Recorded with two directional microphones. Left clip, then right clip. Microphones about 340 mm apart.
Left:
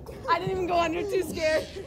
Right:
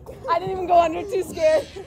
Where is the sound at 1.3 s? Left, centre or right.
Right.